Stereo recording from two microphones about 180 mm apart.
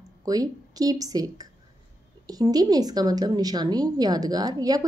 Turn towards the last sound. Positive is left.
turn(degrees=-20)  # may be behind; listen again after turning